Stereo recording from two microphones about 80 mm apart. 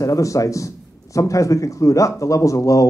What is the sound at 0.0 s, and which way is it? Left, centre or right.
A man's voice, left.